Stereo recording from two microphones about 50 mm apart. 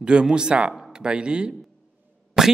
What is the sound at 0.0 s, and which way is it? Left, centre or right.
Speech, centre.